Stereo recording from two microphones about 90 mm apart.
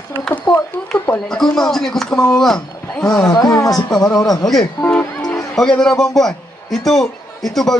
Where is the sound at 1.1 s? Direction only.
5° left (ahead or behind).